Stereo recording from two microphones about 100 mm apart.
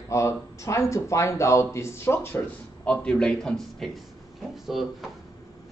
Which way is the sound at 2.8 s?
10° left (ahead or behind).